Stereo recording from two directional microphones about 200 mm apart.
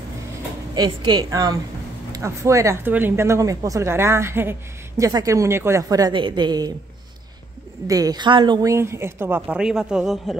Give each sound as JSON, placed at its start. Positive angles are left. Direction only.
{"t": 0.7, "sound": "a woman's voice", "side_deg": -20}
{"t": 7.8, "sound": "speech", "side_deg": -20}